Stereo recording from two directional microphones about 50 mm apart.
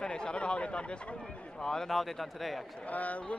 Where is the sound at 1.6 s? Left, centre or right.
Centre.